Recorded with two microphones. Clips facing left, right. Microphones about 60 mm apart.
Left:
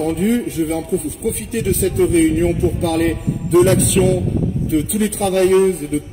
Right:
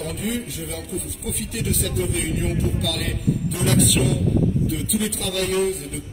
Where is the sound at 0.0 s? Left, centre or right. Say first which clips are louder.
Left 10 dB; left.